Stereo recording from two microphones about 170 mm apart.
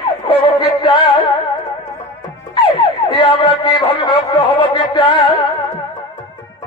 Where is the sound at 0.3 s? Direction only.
30° left (ahead or behind).